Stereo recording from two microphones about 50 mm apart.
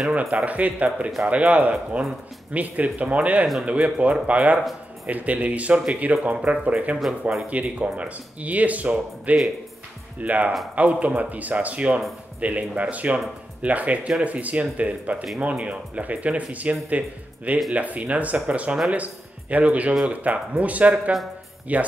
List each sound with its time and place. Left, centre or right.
0.1 s speech: right